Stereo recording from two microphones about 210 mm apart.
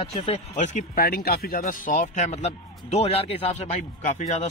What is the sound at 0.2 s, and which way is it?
Speech, 30° left (ahead or behind).